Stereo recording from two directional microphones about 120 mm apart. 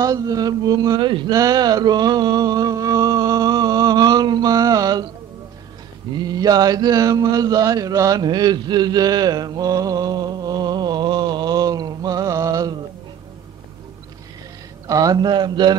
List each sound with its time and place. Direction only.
0.0 s speech: 30° right (ahead or behind)
6.1 s mantra: 35° right (ahead or behind)
14.9 s speech: 30° right (ahead or behind)